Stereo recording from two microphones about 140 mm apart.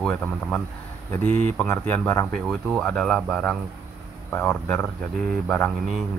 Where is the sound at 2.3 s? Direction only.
5° left (ahead or behind).